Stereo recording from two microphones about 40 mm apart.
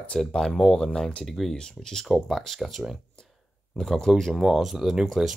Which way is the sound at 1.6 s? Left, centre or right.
Centre.